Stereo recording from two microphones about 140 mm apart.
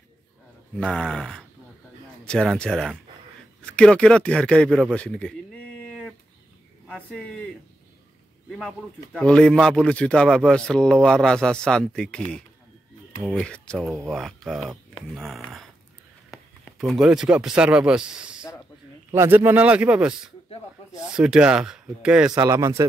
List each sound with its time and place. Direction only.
0.7 s speech: 5° left (ahead or behind)
5.9 s a sound: 5° left (ahead or behind)
8.5 s speech: centre (ahead or behind)
16.3 s a sound: 25° left (ahead or behind)
16.6 s speech: centre (ahead or behind)
22.3 s speech: 20° right (ahead or behind)